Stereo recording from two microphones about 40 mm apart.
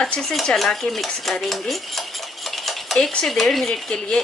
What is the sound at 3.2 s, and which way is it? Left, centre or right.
Speech, centre.